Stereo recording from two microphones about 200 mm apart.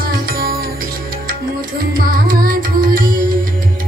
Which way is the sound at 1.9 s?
45° right (ahead or behind).